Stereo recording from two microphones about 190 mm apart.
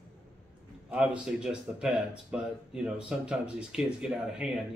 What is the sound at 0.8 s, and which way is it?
Speech, 5° right (ahead or behind).